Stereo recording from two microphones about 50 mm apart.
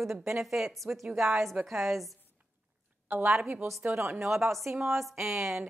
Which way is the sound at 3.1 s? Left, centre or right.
Right.